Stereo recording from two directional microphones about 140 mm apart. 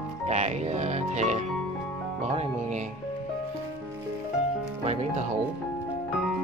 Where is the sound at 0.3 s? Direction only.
55° right (ahead or behind).